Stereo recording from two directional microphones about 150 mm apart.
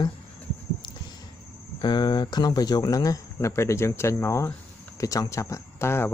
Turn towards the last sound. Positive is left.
turn(degrees=15)  # may be behind; listen again after turning